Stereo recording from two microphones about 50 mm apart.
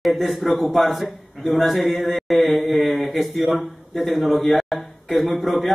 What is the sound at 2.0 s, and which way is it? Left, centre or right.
Mantra, centre.